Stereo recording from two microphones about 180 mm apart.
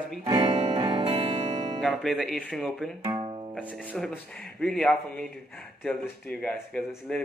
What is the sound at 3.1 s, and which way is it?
Music, 30° right (ahead or behind).